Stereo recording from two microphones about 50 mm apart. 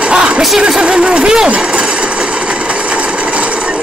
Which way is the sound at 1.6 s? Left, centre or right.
Centre.